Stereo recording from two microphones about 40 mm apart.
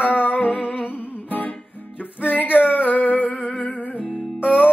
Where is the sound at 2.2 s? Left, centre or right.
Left.